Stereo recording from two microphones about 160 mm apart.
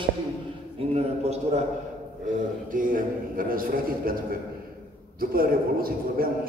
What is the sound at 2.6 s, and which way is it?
A man's voice, 55° right (ahead or behind).